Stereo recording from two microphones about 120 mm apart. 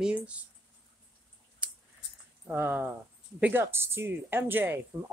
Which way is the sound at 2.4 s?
15° right (ahead or behind).